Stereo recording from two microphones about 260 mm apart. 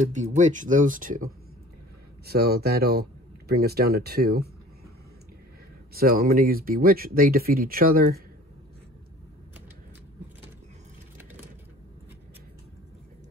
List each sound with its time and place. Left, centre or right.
0.0 s speech: right
5.9 s speech: right